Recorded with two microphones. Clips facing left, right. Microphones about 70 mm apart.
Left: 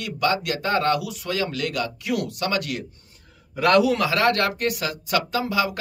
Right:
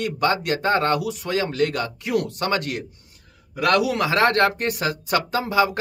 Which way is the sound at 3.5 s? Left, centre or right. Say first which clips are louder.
Left 2 dB; right.